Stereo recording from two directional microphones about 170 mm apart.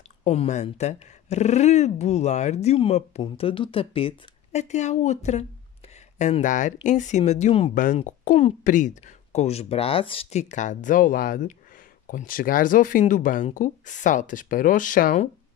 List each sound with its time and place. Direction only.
0.2 s speech: 40° left (ahead or behind)
7.7 s speech: 50° left (ahead or behind); by 10.4 s 35° left (ahead or behind)
10.5 s speech: 45° left (ahead or behind)